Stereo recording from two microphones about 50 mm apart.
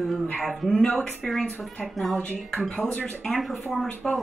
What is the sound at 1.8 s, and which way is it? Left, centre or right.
Speech, centre.